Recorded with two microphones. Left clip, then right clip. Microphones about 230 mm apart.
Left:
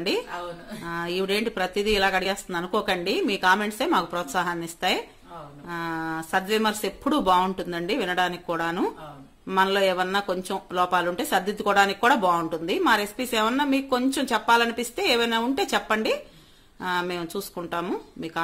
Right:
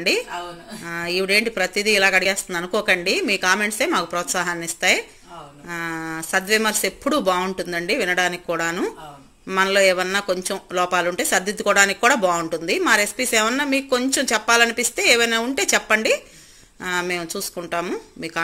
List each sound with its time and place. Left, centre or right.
0.8 s speech: centre